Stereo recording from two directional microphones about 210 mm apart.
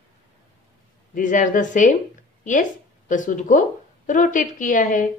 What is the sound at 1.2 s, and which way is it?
A woman's voice, 40° left (ahead or behind).